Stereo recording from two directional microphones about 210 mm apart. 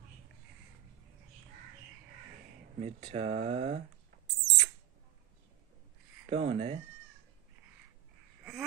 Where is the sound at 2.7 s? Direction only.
30° right (ahead or behind).